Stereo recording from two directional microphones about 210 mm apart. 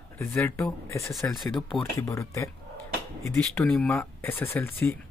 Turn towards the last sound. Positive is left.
turn(degrees=10)  # may be behind; listen again after turning